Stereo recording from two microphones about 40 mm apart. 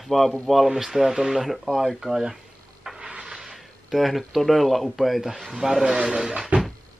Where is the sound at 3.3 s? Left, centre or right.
Centre.